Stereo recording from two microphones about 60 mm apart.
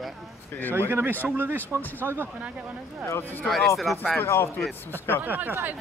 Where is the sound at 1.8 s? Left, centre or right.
Left.